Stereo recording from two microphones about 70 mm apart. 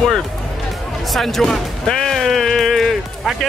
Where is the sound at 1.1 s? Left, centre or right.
Centre.